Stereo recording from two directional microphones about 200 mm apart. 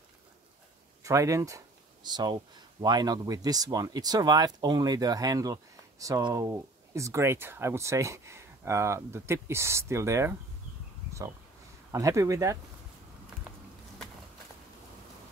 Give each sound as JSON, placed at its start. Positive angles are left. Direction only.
{"t": 1.0, "sound": "speech", "side_deg": -15}
{"t": 11.9, "sound": "speech", "side_deg": -15}